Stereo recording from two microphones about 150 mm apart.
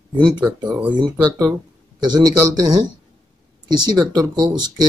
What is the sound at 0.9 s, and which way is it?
Speech, 25° right (ahead or behind).